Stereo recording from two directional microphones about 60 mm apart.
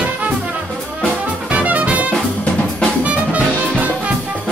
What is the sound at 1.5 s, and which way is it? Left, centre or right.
Music, right.